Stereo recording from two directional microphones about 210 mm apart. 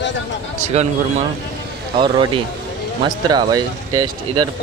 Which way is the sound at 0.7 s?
30° right (ahead or behind).